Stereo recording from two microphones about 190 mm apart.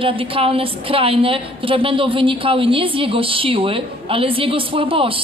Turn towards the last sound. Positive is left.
turn(degrees=-30)  # may be behind; listen again after turning